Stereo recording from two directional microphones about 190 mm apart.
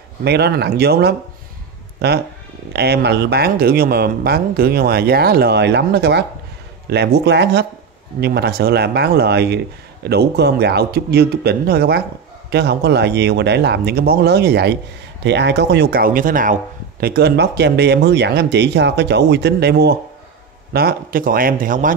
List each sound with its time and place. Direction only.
0.2 s speech: 60° right (ahead or behind); by 16.5 s 45° right (ahead or behind)
17.0 s speech: 55° right (ahead or behind)